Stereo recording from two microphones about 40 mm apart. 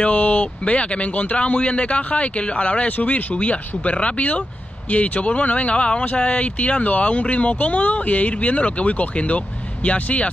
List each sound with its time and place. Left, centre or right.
0.0 s speech: left